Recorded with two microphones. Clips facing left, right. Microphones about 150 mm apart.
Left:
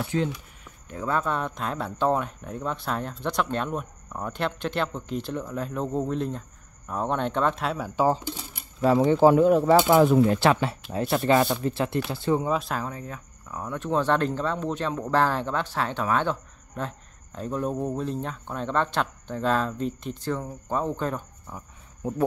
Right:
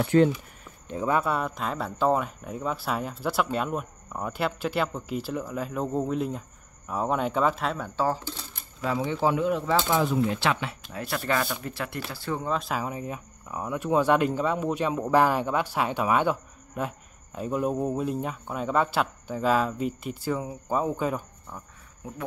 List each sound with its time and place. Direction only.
0.0 s speech: 60° right (ahead or behind)
0.8 s speech: 20° right (ahead or behind); by 8.6 s 15° left (ahead or behind)
8.8 s speech: 45° left (ahead or behind)
9.8 s speech: 50° left (ahead or behind)
10.9 s speech: 25° left (ahead or behind)
12.4 s speech: centre (ahead or behind)
12.8 s speech: 15° right (ahead or behind)